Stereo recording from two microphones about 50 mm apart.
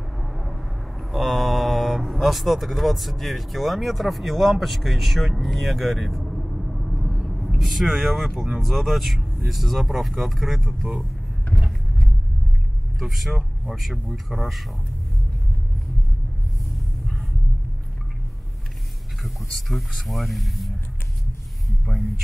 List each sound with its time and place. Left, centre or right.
0.2 s mantra: centre
8.5 s speech: centre
13.2 s speech: centre
14.3 s speech: right
19.7 s speech: centre